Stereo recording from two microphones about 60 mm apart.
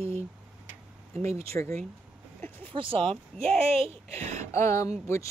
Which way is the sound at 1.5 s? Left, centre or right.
Left.